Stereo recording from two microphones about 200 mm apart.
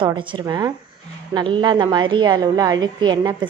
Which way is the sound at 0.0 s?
25° right (ahead or behind).